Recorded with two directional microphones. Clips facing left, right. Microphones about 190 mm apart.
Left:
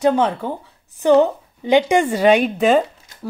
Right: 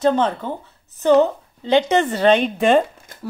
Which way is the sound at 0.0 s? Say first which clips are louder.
Left 1 dB; 10° left (ahead or behind).